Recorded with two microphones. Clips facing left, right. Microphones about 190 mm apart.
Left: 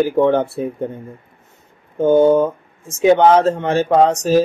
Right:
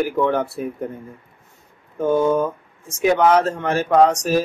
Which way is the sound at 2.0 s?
30° left (ahead or behind).